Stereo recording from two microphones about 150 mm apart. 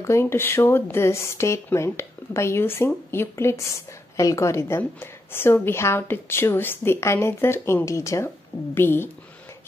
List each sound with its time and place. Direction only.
0.0 s a woman's voice: 15° left (ahead or behind)